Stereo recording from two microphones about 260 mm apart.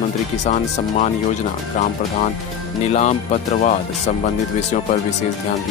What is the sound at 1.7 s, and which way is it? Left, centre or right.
Speech, left.